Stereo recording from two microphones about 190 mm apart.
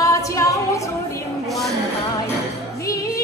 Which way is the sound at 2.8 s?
20° left (ahead or behind).